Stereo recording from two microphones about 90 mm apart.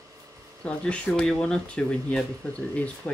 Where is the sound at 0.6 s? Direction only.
15° left (ahead or behind).